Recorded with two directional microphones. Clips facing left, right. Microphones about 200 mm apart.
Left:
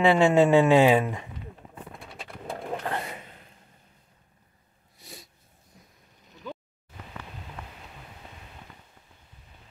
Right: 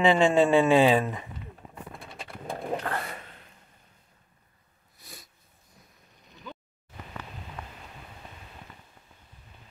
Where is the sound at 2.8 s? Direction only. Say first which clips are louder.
Left 1 dB; 20° left (ahead or behind).